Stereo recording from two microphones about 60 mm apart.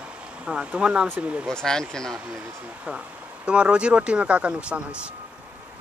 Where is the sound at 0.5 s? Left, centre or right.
Centre.